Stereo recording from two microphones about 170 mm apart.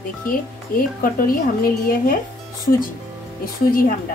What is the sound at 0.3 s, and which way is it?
A woman's voice, 60° left (ahead or behind).